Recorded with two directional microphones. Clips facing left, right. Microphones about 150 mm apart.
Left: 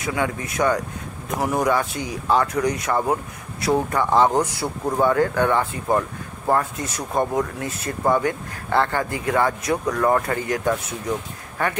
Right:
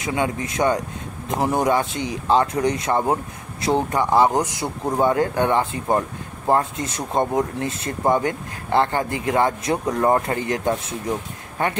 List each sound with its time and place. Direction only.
0.0 s speech: 25° right (ahead or behind)